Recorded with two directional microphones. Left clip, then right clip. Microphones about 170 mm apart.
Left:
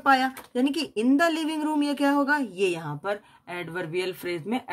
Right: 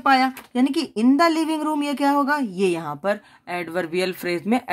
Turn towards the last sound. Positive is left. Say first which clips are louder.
# right 7 dB
turn(degrees=-40)  # may be behind; listen again after turning